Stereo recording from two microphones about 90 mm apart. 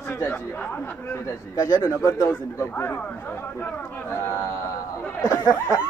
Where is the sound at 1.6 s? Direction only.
35° left (ahead or behind).